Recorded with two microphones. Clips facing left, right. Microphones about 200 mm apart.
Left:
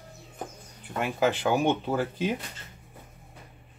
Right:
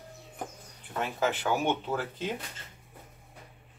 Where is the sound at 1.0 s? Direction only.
15° left (ahead or behind).